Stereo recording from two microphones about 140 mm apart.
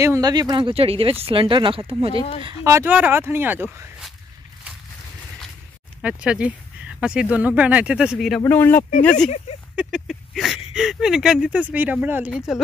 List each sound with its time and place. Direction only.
0.0 s speech: 25° right (ahead or behind); by 2.1 s 40° right (ahead or behind)
2.4 s speech: 25° right (ahead or behind)
6.0 s speech: 10° right (ahead or behind)
8.4 s speech: 15° left (ahead or behind)
9.8 s speech: 5° right (ahead or behind)